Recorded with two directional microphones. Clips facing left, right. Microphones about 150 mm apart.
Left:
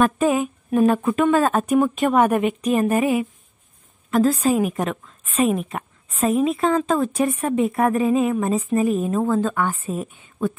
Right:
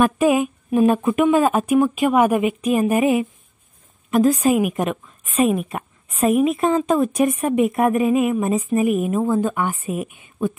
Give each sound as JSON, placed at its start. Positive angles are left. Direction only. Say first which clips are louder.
{"t": 0.0, "sound": "a woman's voice", "louder": "right 2 dB", "side_deg": -15}